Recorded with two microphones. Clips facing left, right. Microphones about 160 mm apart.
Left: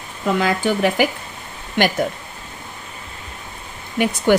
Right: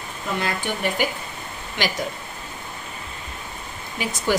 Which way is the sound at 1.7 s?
55° left (ahead or behind).